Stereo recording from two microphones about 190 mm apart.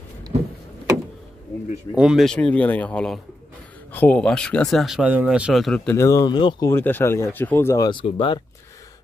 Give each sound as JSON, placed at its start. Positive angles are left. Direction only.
{"t": 2.0, "sound": "speech", "side_deg": 0}
{"t": 5.9, "sound": "speech", "side_deg": 15}